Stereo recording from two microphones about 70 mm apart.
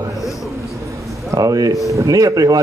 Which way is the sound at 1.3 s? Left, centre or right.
Right.